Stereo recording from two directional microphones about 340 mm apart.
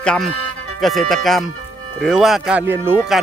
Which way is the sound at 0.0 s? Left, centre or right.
Centre.